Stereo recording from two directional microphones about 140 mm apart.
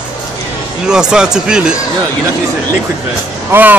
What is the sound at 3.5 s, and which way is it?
Speech, 15° right (ahead or behind).